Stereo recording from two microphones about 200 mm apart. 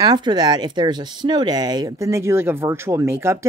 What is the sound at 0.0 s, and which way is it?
Speech, 20° right (ahead or behind).